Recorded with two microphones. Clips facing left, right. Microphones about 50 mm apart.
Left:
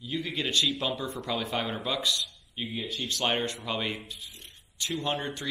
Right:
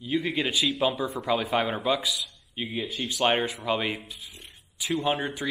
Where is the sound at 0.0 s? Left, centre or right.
Centre.